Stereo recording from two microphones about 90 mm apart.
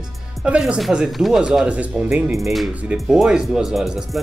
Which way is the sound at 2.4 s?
Centre (ahead or behind).